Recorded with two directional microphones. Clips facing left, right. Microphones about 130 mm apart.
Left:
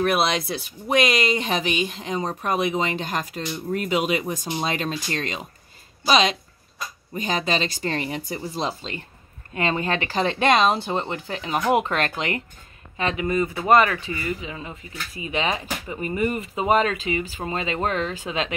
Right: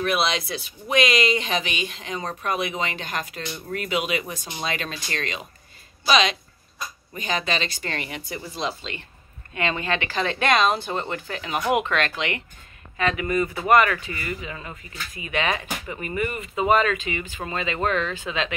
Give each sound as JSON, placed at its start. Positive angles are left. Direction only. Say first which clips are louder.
{"t": 0.0, "sound": "speech", "louder": "left 2 dB", "side_deg": 45}
{"t": 12.9, "sound": "speech", "louder": "even", "side_deg": 25}
{"t": 15.2, "sound": "speech", "louder": "even", "side_deg": 30}